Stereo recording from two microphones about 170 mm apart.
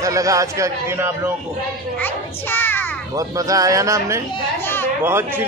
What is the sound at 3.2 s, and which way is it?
A man's voice, 20° right (ahead or behind).